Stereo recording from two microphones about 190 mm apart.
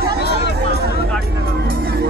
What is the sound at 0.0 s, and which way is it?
Music, 60° right (ahead or behind).